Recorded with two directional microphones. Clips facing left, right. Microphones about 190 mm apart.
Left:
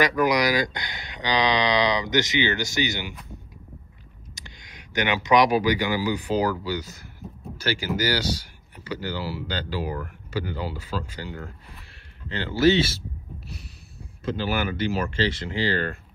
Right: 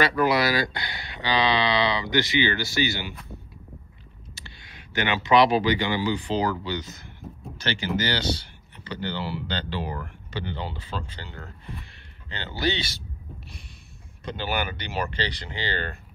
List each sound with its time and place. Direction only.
0.0 s speech: 15° left (ahead or behind)
4.4 s speech: 15° left (ahead or behind)
14.2 s speech: centre (ahead or behind)